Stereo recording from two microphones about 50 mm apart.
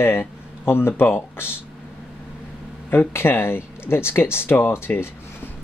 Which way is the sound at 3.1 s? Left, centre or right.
Left.